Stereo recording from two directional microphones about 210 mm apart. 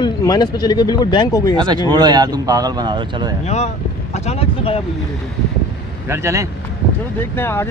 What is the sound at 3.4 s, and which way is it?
Speech, 30° left (ahead or behind).